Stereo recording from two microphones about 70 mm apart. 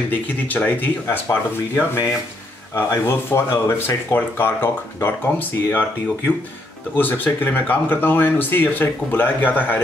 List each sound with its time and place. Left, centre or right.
0.5 s speech: left